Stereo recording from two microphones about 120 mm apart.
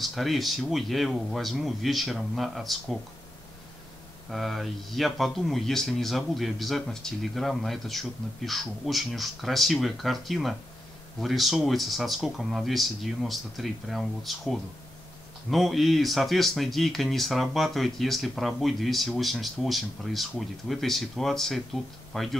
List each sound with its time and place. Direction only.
0.0 s speech: centre (ahead or behind)
4.3 s speech: centre (ahead or behind)